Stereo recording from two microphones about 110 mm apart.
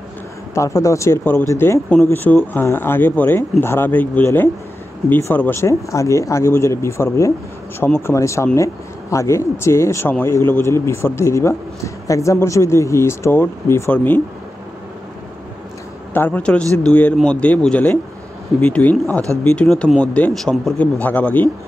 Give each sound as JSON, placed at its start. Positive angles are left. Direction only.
{"t": 0.6, "sound": "speech", "side_deg": 30}
{"t": 16.1, "sound": "speech", "side_deg": 15}